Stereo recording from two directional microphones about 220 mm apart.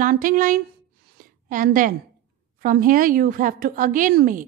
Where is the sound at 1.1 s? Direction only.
35° right (ahead or behind).